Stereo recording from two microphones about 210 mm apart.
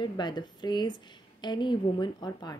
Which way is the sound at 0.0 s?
20° left (ahead or behind).